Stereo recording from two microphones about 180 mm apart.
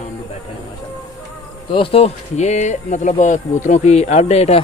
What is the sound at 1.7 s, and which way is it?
Speech, 30° left (ahead or behind).